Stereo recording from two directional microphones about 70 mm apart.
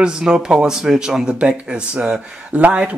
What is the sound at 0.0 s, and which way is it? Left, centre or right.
Speech, centre.